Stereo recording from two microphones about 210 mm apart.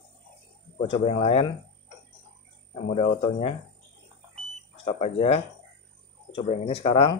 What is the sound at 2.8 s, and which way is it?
Speech, 35° left (ahead or behind).